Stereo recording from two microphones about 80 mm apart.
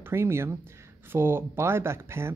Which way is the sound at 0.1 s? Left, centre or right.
Right.